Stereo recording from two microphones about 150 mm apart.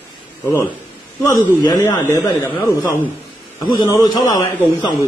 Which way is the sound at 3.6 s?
25° left (ahead or behind).